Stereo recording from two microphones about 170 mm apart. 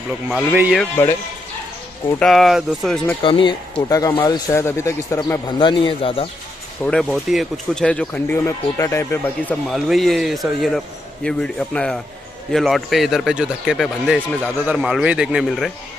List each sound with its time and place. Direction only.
0.3 s speech: 5° right (ahead or behind)
2.2 s speech: centre (ahead or behind)
3.2 s speech: 30° left (ahead or behind)
5.6 s a man's voice: 30° left (ahead or behind)
6.8 s speech: 5° left (ahead or behind)
9.7 s speech: centre (ahead or behind)